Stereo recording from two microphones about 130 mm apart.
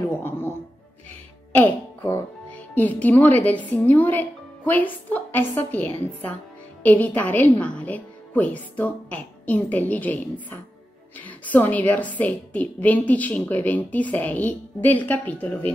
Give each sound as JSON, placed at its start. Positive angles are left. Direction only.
{"t": 0.2, "sound": "music", "side_deg": 15}
{"t": 1.5, "sound": "a woman's voice", "side_deg": 15}